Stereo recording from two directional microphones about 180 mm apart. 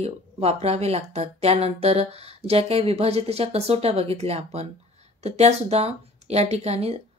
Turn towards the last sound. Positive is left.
turn(degrees=-35)  # may be behind; listen again after turning